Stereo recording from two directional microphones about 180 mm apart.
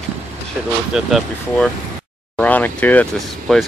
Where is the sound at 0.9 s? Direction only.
Centre (ahead or behind).